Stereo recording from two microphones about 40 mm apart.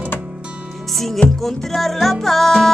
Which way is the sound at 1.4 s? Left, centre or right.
Centre.